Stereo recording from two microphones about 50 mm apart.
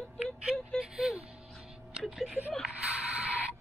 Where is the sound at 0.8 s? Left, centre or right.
Centre.